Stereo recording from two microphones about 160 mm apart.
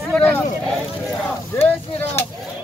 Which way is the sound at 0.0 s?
5° left (ahead or behind).